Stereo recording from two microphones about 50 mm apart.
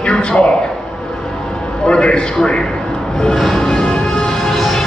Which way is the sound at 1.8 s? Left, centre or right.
Centre.